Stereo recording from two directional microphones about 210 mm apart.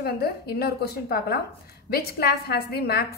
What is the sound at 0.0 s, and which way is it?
A woman's voice, 50° left (ahead or behind).